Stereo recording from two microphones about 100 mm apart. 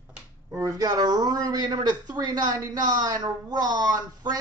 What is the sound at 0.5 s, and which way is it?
Speech, 35° right (ahead or behind).